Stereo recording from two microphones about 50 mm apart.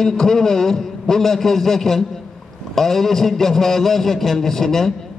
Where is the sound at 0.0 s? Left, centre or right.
Centre.